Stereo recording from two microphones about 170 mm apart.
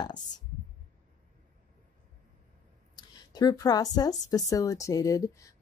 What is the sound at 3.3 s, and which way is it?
A woman's voice, 25° left (ahead or behind).